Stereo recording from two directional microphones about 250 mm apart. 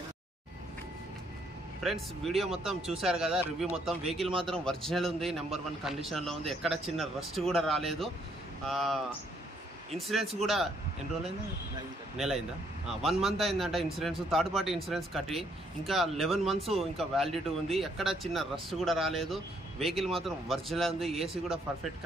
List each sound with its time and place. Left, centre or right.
1.8 s a man's voice: centre
12.8 s a man's voice: centre